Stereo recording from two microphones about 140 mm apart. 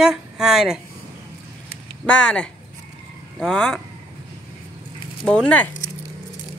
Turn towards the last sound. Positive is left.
turn(degrees=5)  # may be behind; listen again after turning